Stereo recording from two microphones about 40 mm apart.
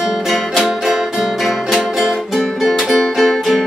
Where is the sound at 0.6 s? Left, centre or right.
Centre.